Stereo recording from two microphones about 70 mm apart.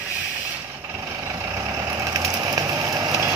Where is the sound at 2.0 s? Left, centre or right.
Right.